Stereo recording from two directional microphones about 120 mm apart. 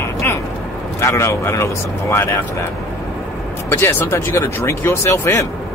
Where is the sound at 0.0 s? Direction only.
20° left (ahead or behind).